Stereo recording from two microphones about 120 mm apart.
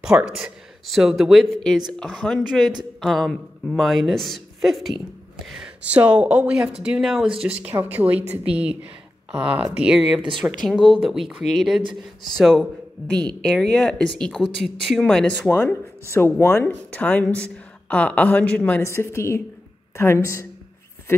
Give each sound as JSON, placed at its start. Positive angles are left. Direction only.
{"t": 0.0, "sound": "speech", "side_deg": -5}
{"t": 15.5, "sound": "speech", "side_deg": 20}
{"t": 18.8, "sound": "a woman's voice", "side_deg": 25}